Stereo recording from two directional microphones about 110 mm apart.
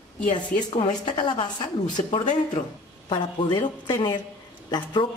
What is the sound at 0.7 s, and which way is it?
A woman's voice, 45° left (ahead or behind).